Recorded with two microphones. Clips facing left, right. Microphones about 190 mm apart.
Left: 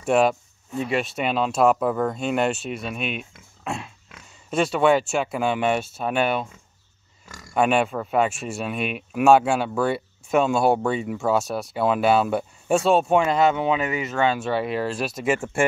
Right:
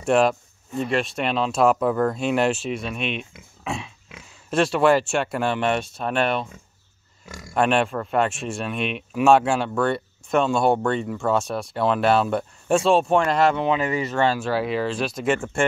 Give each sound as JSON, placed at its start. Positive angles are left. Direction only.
{"t": 0.0, "sound": "speech", "side_deg": 5}
{"t": 7.5, "sound": "speech", "side_deg": 5}